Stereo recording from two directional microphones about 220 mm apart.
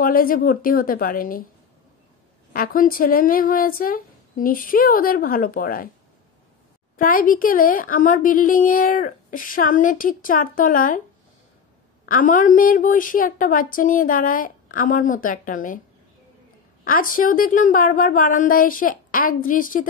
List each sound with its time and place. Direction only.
0.0 s a woman's voice: 40° left (ahead or behind)
2.5 s a woman's voice: 40° left (ahead or behind)
7.0 s a woman's voice: 40° left (ahead or behind)
12.1 s a woman's voice: 40° left (ahead or behind)
16.8 s a woman's voice: 40° left (ahead or behind)